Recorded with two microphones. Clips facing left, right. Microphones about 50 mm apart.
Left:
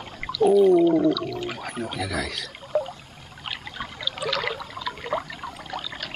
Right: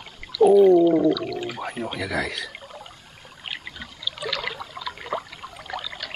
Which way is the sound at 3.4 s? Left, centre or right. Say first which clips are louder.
Even; centre.